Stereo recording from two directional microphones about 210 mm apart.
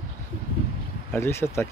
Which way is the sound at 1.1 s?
10° left (ahead or behind).